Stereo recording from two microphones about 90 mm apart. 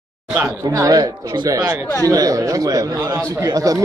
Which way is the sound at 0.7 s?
40° right (ahead or behind).